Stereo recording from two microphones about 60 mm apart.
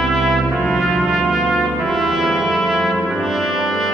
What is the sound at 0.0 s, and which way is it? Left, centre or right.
Trumpet, centre.